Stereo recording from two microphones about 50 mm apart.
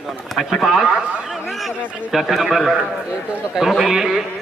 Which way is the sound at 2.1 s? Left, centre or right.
Centre.